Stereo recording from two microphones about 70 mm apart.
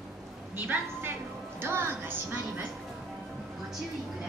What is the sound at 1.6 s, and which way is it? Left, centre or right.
Music, right.